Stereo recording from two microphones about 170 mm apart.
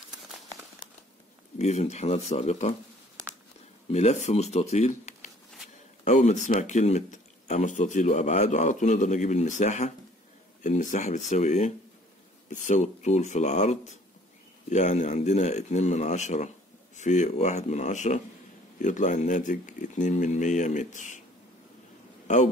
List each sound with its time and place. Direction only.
1.6 s speech: 40° left (ahead or behind)
3.9 s speech: 40° left (ahead or behind)